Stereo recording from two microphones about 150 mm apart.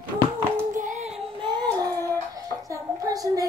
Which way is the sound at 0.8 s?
55° right (ahead or behind).